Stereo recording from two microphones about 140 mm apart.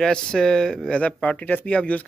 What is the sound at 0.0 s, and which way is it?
Speech, 5° left (ahead or behind).